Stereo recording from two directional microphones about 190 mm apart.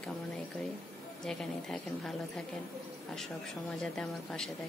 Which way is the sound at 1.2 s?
Centre (ahead or behind).